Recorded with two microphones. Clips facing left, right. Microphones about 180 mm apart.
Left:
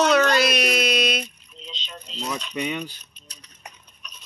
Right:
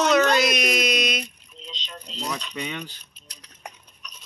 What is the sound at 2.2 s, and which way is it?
Speech, 5° left (ahead or behind).